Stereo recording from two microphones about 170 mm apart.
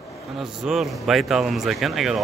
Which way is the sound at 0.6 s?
Centre (ahead or behind).